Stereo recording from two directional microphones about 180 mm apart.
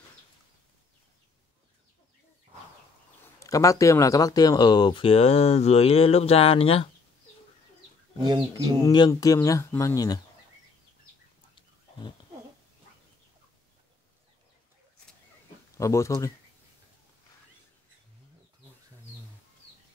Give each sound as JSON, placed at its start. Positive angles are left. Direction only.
{"t": 3.3, "sound": "speech", "side_deg": 20}
{"t": 8.3, "sound": "speech", "side_deg": -20}
{"t": 8.8, "sound": "speech", "side_deg": 20}
{"t": 15.8, "sound": "speech", "side_deg": 15}